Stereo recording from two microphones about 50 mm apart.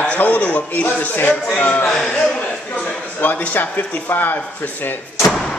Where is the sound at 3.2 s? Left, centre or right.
Left.